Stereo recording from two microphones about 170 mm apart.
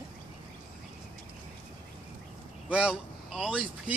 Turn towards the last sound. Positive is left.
turn(degrees=-5)  # may be behind; listen again after turning